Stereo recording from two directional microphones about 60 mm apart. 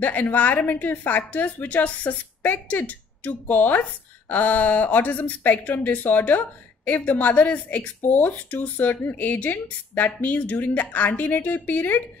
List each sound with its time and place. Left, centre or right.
0.0 s speech: left